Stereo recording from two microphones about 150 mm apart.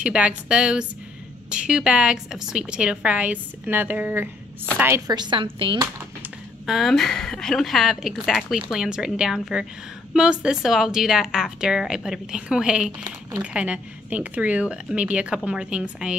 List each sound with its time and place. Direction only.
0.0 s a woman's voice: 10° right (ahead or behind); by 5.9 s 35° right (ahead or behind)
6.6 s a woman's voice: centre (ahead or behind)